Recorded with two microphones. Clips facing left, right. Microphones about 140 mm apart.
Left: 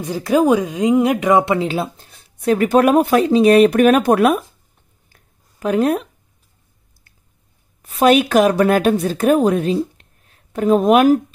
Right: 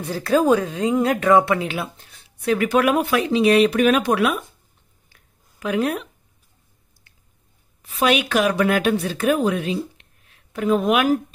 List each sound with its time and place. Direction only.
0.0 s a woman's voice: 15° left (ahead or behind)
1.7 s speech: 35° left (ahead or behind)
5.1 s a sound: 40° left (ahead or behind)
7.8 s speech: 40° left (ahead or behind)